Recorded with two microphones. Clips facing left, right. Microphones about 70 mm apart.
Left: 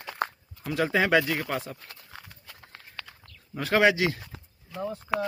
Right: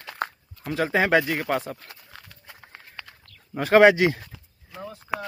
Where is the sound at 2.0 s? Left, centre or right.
Centre.